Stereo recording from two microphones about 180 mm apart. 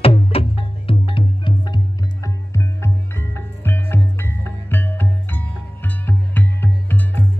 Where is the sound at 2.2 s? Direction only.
15° left (ahead or behind).